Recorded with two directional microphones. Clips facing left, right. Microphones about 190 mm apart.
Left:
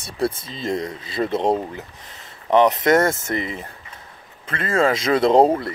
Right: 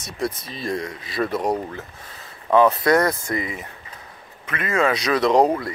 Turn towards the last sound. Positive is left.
turn(degrees=25)  # may be behind; listen again after turning